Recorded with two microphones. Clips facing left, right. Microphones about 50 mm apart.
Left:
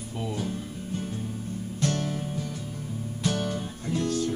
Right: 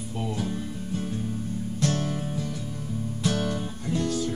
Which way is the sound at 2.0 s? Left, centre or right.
Right.